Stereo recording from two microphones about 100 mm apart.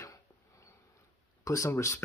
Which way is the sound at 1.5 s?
30° left (ahead or behind).